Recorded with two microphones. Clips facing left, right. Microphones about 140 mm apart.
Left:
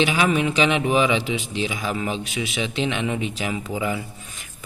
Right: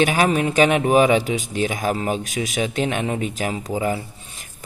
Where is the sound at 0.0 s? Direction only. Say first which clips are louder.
Right 2 dB; 45° right (ahead or behind).